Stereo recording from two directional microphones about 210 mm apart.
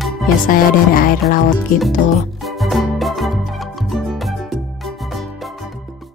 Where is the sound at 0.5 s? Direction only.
40° left (ahead or behind).